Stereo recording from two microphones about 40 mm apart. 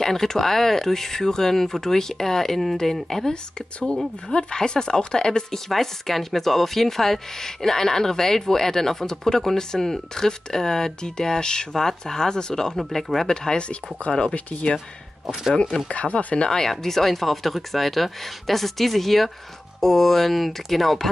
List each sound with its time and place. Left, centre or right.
0.0 s speech: centre
5.7 s speech: centre
12.7 s speech: centre
13.3 s speech: centre
14.3 s speech: left
15.9 s speech: left
16.4 s speech: centre